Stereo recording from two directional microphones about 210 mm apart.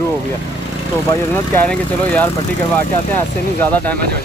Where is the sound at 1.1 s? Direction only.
10° left (ahead or behind).